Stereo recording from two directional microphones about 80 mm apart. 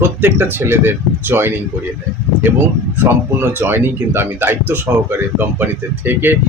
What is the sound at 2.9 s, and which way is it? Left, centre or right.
Speech, right.